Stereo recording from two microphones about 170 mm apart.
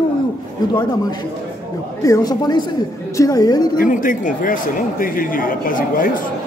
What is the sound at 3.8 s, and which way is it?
A man's voice, 50° left (ahead or behind).